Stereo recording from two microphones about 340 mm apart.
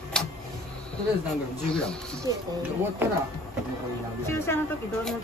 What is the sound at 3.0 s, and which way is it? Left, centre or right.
Speech, centre.